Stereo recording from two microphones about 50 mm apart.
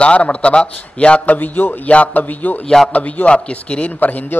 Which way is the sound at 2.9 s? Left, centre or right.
Left.